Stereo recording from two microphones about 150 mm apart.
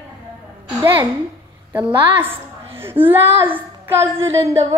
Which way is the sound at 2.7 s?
15° right (ahead or behind).